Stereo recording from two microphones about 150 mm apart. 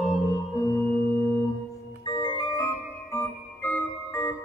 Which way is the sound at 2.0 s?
30° left (ahead or behind).